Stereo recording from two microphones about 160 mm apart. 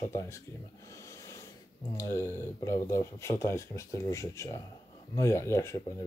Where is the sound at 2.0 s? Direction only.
15° left (ahead or behind).